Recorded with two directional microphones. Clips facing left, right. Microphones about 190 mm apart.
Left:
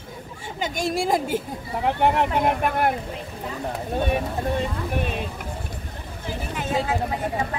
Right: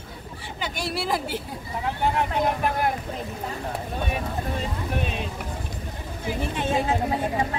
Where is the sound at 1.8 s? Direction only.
65° left (ahead or behind).